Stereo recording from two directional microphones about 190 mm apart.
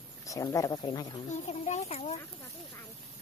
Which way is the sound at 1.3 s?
35° left (ahead or behind).